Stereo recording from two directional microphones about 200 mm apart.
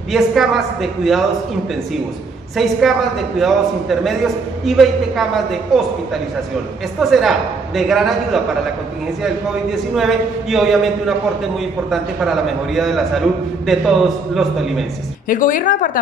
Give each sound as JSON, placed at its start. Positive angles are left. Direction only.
{"t": 0.1, "sound": "a man's voice", "side_deg": 0}
{"t": 2.5, "sound": "a man's voice", "side_deg": 0}
{"t": 7.0, "sound": "a man's voice", "side_deg": 0}
{"t": 15.2, "sound": "a woman's voice", "side_deg": 40}